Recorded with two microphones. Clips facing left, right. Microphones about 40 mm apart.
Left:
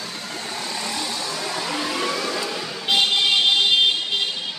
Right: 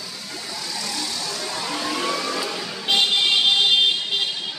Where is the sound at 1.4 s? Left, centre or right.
Centre.